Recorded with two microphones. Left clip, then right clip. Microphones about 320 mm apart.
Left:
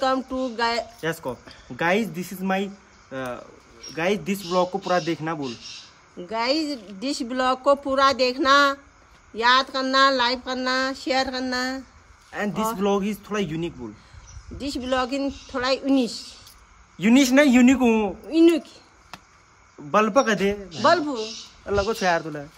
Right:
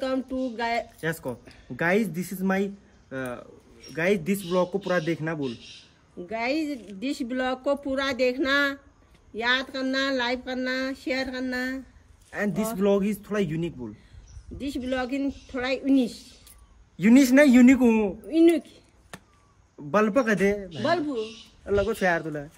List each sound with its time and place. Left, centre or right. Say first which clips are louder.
0.0 s speech: left 5 dB; centre
1.8 s a man's voice: left 2 dB; centre
4.5 s a man's voice: left 4 dB; centre
6.2 s speech: left 4 dB; centre
12.3 s a man's voice: left 3 dB; centre
14.6 s speech: left 5 dB; centre
17.0 s a man's voice: left 1 dB; centre
18.3 s a sound: left 2 dB; centre
19.9 s a man's voice: left 3 dB; centre
20.8 s speech: left 7 dB; centre
21.6 s a man's voice: left 2 dB; centre